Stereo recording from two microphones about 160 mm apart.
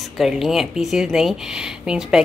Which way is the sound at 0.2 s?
Centre (ahead or behind).